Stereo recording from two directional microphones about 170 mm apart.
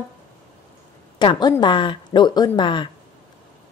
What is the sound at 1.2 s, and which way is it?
A woman's voice, 25° left (ahead or behind).